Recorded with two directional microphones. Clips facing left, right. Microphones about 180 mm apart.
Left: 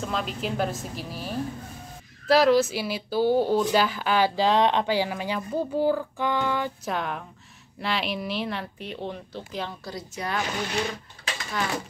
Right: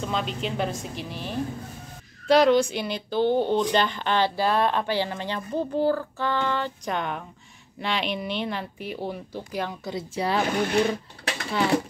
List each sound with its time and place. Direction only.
0.0 s a woman's voice: centre (ahead or behind)
9.8 s speech: 25° right (ahead or behind)
10.4 s speech: 55° right (ahead or behind)